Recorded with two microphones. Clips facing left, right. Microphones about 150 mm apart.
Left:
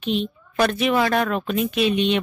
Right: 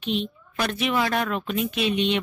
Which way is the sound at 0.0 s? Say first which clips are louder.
Left 3 dB; 45° left (ahead or behind).